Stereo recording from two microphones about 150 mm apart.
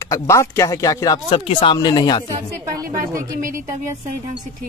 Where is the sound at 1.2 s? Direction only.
35° left (ahead or behind).